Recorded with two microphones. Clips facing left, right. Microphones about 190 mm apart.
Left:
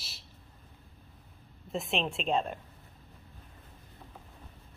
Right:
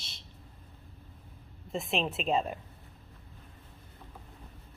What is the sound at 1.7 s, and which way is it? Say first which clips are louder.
Speech: right 1 dB; centre (ahead or behind).